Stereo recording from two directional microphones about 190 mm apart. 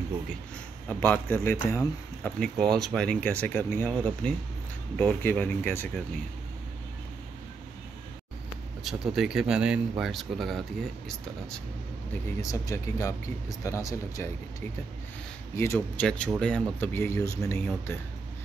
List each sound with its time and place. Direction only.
0.8 s speech: 10° left (ahead or behind)
2.4 s speech: 5° left (ahead or behind)
8.8 s speech: centre (ahead or behind)
12.4 s speech: 15° left (ahead or behind)
15.5 s speech: 15° left (ahead or behind)